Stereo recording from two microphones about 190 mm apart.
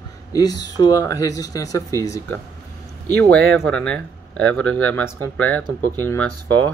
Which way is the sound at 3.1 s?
60° right (ahead or behind).